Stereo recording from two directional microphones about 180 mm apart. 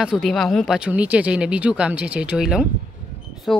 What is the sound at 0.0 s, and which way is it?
Speech, 5° right (ahead or behind).